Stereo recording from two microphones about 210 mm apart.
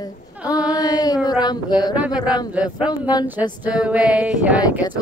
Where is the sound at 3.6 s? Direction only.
5° right (ahead or behind).